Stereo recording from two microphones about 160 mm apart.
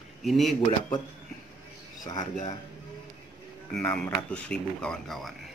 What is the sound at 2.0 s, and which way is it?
Speech, 25° left (ahead or behind).